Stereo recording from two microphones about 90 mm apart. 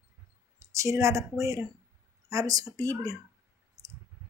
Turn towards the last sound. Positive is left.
turn(degrees=-40)  # may be behind; listen again after turning